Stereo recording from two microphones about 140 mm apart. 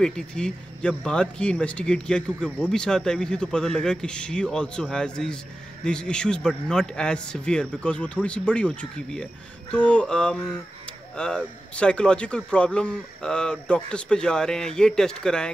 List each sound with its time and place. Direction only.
0.0 s speech: 5° left (ahead or behind)